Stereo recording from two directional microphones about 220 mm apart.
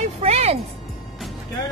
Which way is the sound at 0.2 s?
30° right (ahead or behind).